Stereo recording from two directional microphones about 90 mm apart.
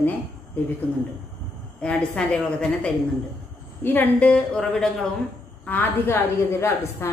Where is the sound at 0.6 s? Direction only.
20° left (ahead or behind).